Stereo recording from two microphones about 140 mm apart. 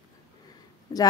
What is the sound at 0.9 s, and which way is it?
Speech, 30° left (ahead or behind).